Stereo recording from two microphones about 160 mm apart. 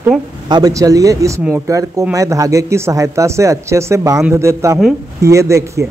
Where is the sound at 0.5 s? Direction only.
25° right (ahead or behind).